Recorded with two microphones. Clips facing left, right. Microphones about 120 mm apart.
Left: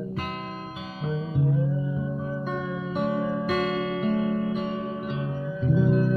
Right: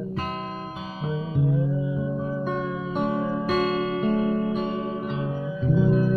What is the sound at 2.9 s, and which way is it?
Music, 15° right (ahead or behind).